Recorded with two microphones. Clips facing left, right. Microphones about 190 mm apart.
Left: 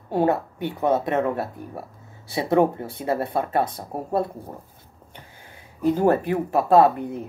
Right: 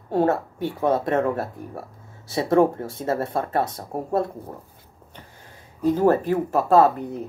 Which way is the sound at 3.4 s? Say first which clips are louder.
Left 1 dB; 20° left (ahead or behind).